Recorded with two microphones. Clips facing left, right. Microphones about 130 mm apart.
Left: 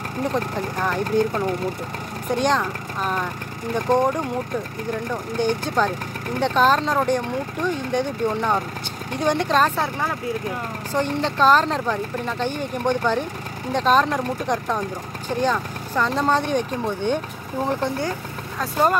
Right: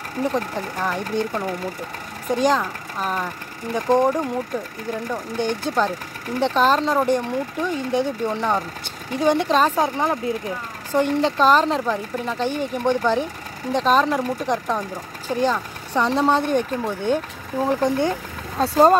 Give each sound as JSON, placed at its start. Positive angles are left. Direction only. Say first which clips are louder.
{"t": 0.2, "sound": "speech", "louder": "right 1 dB", "side_deg": 0}
{"t": 6.4, "sound": "speech", "louder": "even", "side_deg": 0}
{"t": 9.8, "sound": "speech", "louder": "right 4 dB", "side_deg": -20}
{"t": 11.0, "sound": "speech", "louder": "right 3 dB", "side_deg": -5}
{"t": 15.9, "sound": "speech", "louder": "right 2 dB", "side_deg": -15}
{"t": 18.6, "sound": "speech", "louder": "right 6 dB", "side_deg": -30}